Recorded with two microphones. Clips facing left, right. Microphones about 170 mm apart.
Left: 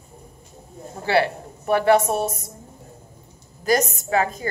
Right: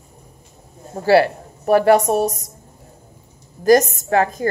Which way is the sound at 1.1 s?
40° right (ahead or behind).